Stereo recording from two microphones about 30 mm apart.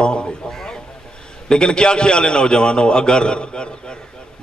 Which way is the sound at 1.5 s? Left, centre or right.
Left.